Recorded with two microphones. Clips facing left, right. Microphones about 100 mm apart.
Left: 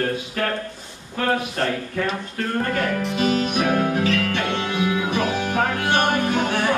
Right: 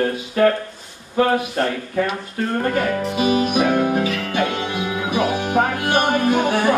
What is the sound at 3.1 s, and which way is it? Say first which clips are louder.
Music: right 4 dB; 10° right (ahead or behind).